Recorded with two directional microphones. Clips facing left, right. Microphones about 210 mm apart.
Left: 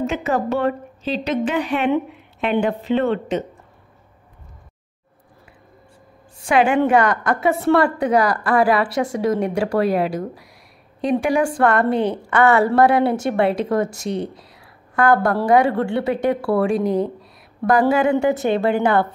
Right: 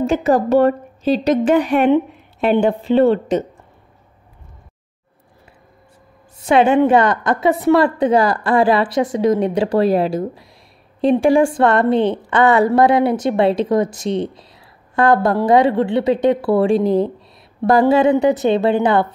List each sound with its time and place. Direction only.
0.0 s a woman's voice: 35° right (ahead or behind)
2.6 s a woman's voice: 35° right (ahead or behind)
6.4 s a woman's voice: 20° right (ahead or behind)